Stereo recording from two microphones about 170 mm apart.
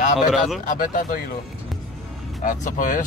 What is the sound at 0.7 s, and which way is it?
Speech, 55° left (ahead or behind).